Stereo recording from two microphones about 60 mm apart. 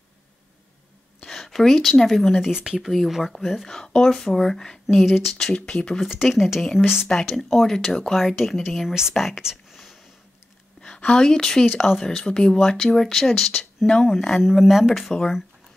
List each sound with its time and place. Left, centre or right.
1.2 s speech: centre
2.5 s speech: centre
2.8 s speech: centre
4.8 s speech: centre
5.4 s speech: centre
5.9 s speech: centre
10.8 s a woman's voice: centre
14.4 s speech: centre